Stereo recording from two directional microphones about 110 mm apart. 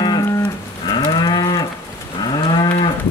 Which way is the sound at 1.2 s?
35° left (ahead or behind).